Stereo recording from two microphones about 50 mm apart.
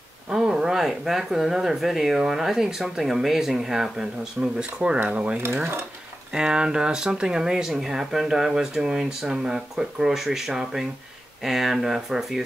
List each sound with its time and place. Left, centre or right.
0.3 s speech: centre
4.4 s speech: centre